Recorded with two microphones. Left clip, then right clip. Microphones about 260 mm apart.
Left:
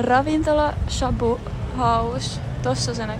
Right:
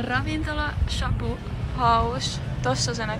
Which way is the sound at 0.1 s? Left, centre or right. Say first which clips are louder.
Left 10 dB; centre.